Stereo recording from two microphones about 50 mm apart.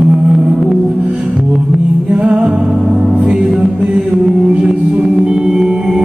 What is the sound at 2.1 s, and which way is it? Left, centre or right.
Music, right.